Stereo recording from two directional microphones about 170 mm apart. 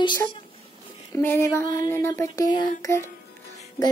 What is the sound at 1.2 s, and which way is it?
Speech, 15° left (ahead or behind).